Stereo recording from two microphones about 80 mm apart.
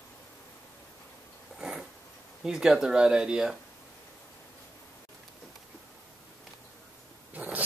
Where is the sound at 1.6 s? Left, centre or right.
Centre.